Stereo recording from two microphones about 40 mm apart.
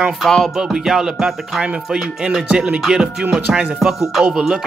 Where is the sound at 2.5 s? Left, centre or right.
Right.